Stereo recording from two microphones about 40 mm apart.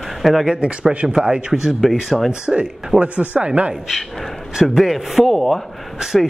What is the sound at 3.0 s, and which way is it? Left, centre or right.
Speech, right.